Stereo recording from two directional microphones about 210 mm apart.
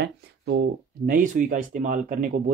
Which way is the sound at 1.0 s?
40° right (ahead or behind).